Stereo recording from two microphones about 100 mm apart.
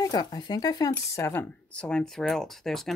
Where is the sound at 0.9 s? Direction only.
25° left (ahead or behind).